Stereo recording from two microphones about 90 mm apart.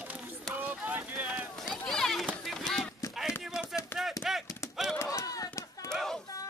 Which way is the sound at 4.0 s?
5° right (ahead or behind).